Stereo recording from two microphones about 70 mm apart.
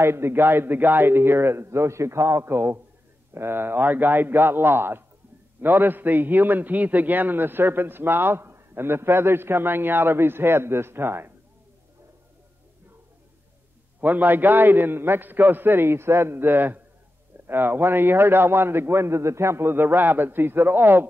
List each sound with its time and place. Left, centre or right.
0.0 s a man's voice: right
14.0 s a man's voice: right